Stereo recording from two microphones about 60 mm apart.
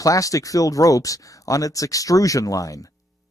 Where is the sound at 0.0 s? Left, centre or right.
Left.